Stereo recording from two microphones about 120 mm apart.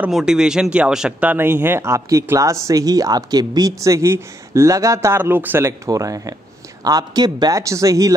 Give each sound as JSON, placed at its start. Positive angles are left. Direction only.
{"t": 0.1, "sound": "speech", "side_deg": -5}
{"t": 1.3, "sound": "speech", "side_deg": -20}